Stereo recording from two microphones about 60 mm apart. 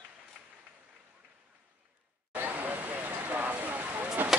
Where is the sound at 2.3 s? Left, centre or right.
Right.